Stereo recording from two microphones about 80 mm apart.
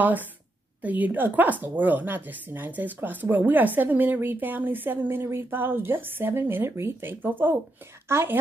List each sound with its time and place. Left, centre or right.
0.8 s a woman's voice: right